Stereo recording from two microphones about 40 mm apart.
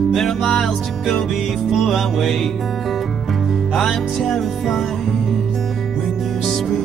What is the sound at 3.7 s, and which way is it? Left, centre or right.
Music, centre.